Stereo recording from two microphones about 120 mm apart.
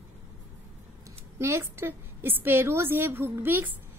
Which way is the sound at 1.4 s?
20° right (ahead or behind).